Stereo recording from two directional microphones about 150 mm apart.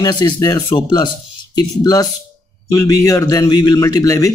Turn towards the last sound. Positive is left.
turn(degrees=25)  # may be behind; listen again after turning